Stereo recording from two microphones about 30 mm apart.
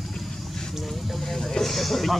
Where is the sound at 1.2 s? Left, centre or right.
Centre.